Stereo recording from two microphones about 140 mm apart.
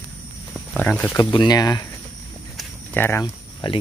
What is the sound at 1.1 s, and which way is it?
Speech, 30° left (ahead or behind).